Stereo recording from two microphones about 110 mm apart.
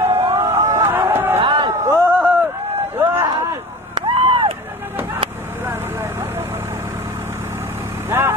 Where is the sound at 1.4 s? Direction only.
50° right (ahead or behind).